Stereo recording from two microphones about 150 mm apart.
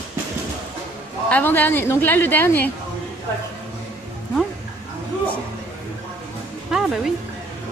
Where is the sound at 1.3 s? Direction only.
10° left (ahead or behind).